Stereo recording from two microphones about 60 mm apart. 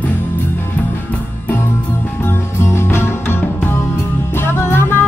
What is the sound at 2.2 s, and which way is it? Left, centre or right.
Music, left.